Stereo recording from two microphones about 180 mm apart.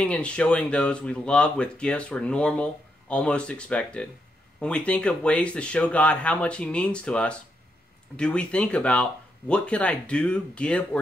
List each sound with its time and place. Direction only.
0.0 s speech: 5° left (ahead or behind)